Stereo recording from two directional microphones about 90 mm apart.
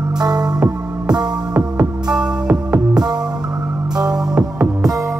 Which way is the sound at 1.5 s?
10° right (ahead or behind).